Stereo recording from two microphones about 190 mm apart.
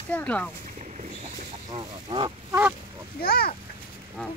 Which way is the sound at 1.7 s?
25° right (ahead or behind).